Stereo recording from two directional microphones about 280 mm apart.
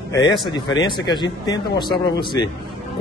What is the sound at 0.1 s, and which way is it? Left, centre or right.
A man's voice, centre.